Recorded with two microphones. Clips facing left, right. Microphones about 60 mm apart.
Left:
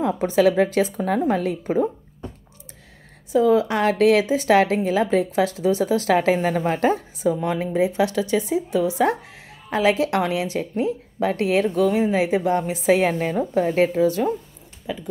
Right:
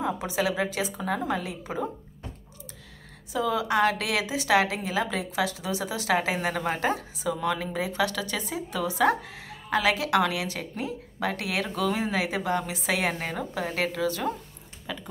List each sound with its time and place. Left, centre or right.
0.0 s a woman's voice: left
3.3 s a woman's voice: left